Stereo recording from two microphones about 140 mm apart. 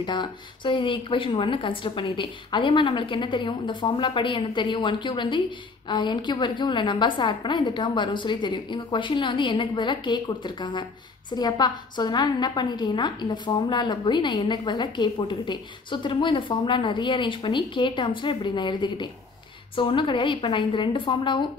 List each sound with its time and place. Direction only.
0.0 s a woman's voice: 30° left (ahead or behind)